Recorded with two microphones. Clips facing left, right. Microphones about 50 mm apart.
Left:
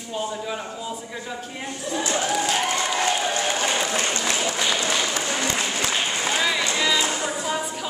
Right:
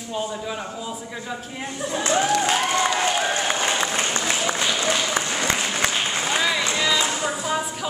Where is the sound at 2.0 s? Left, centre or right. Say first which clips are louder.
Right 5 dB; right.